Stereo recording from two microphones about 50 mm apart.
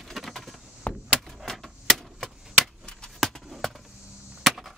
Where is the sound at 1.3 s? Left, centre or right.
Centre.